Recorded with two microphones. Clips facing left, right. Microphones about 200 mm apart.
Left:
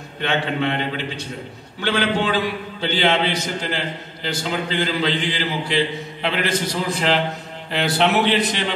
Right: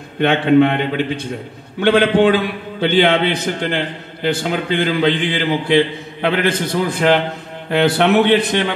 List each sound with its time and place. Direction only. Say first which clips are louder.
0.2 s a man's voice: right 10 dB; 55° right (ahead or behind)